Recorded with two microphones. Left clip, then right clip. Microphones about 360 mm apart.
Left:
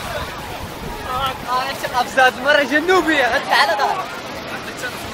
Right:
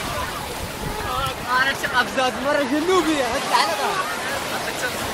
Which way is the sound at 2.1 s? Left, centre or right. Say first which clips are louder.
Left 7 dB; left.